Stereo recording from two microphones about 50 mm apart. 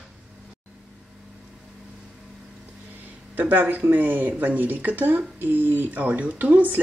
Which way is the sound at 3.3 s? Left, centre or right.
Right.